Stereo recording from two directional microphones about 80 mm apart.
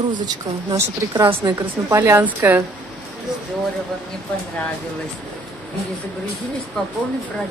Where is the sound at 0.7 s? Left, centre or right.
Right.